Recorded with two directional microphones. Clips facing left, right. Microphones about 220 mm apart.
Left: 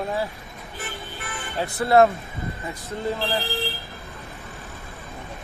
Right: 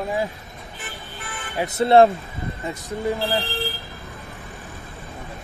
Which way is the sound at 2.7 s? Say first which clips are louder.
Right 3 dB; 15° right (ahead or behind).